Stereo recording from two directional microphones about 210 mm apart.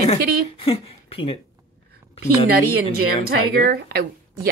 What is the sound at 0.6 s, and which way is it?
Speech, 25° left (ahead or behind).